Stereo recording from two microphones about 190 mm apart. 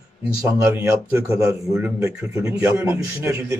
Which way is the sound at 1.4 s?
15° right (ahead or behind).